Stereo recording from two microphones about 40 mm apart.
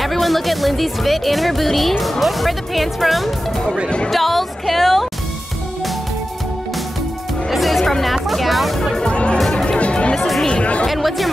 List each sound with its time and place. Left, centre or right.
0.0 s speech: centre
7.5 s music: centre
8.0 s speech: centre
8.9 s speech: left
9.5 s music: centre
9.8 s music: left
10.1 s music: centre
10.6 s music: left
10.9 s music: centre